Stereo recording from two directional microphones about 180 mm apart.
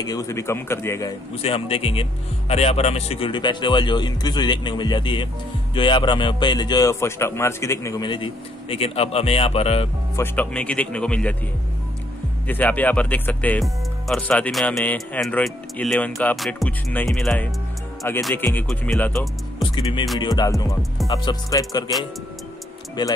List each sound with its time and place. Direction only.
0.0 s speech: 20° left (ahead or behind)
1.3 s a man's voice: 35° left (ahead or behind)
10.1 s speech: 10° left (ahead or behind)
12.4 s speech: 10° left (ahead or behind)
16.1 s music: 10° left (ahead or behind)
18.3 s speech: 10° left (ahead or behind)
19.6 s music: 25° left (ahead or behind)
20.2 s a man's voice: 20° left (ahead or behind)
23.0 s a man's voice: 25° left (ahead or behind)